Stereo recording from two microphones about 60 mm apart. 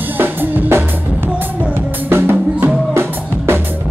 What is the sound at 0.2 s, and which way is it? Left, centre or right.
Drum, right.